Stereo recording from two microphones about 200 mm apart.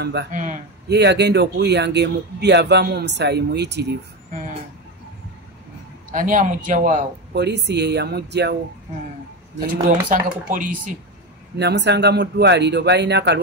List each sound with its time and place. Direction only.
0.0 s speech: 60° right (ahead or behind)
0.3 s speech: 40° right (ahead or behind)
0.8 s speech: 55° right (ahead or behind)
6.1 s speech: 40° right (ahead or behind)
7.3 s speech: 55° right (ahead or behind)
9.7 s speech: 40° right (ahead or behind)
11.5 s speech: 60° right (ahead or behind)